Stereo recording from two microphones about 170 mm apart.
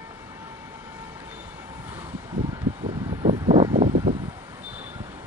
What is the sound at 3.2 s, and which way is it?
Vehicle, 30° right (ahead or behind).